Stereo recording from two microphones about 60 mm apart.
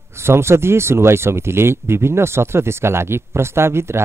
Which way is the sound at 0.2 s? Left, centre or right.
Right.